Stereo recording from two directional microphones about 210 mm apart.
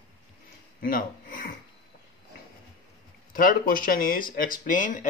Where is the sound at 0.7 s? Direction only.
40° left (ahead or behind).